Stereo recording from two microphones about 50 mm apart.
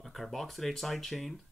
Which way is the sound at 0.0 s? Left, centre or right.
Centre.